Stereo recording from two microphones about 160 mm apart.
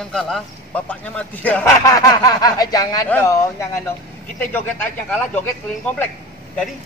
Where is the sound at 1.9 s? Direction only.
20° left (ahead or behind).